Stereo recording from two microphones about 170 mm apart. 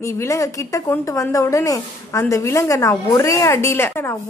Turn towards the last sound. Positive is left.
turn(degrees=15)  # may be behind; listen again after turning